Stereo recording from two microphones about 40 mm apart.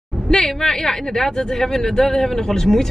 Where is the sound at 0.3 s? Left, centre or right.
Centre.